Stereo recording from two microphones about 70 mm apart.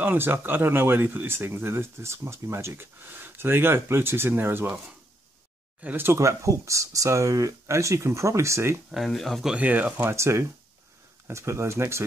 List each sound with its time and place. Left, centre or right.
0.0 s speech: right
5.8 s speech: right
6.1 s speech: right
8.9 s speech: centre
9.6 s speech: right
10.0 s speech: right